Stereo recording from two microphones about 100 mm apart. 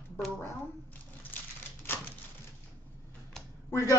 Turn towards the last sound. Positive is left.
turn(degrees=30)  # may be behind; listen again after turning